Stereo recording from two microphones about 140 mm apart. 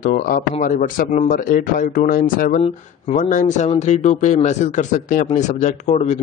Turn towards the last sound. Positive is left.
turn(degrees=55)  # may be behind; listen again after turning